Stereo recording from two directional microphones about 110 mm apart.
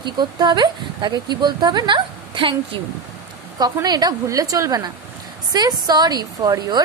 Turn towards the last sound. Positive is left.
turn(degrees=-35)  # may be behind; listen again after turning